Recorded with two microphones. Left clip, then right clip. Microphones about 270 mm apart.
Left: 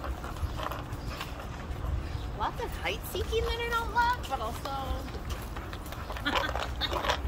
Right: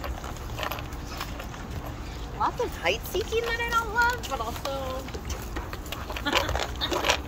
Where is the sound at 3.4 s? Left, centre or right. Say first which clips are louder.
Right 4 dB; centre.